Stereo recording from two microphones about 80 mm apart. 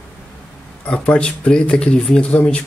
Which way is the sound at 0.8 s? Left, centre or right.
Centre.